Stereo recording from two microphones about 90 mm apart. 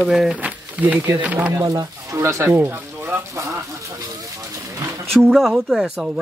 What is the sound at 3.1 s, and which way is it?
Speech, 35° right (ahead or behind).